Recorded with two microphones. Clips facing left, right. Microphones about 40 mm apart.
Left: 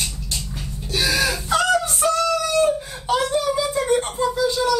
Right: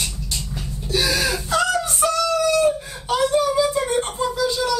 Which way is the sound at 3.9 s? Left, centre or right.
Centre.